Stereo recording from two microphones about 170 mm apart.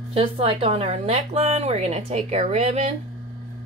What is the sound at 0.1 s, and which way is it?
Speech, 35° right (ahead or behind).